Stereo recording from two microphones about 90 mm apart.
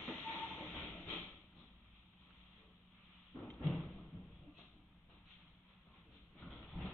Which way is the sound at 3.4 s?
5° left (ahead or behind).